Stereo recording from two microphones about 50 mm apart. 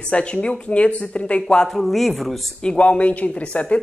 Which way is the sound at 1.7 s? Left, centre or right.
Centre.